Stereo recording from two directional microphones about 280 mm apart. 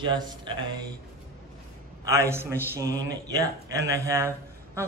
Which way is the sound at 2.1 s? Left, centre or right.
Centre.